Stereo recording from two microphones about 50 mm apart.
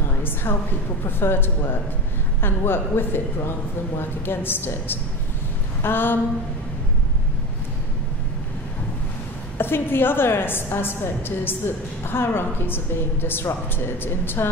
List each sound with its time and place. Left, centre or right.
0.2 s a woman's voice: left
5.8 s a sound: left
9.6 s a woman's voice: left